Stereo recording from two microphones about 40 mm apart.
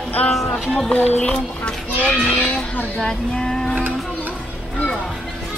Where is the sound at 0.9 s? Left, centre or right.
Left.